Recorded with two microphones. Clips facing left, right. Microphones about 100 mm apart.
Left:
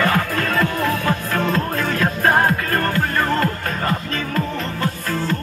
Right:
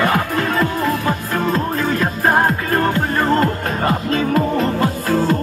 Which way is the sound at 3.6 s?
35° right (ahead or behind).